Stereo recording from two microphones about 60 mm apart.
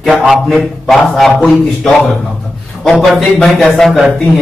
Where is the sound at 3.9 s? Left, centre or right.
Centre.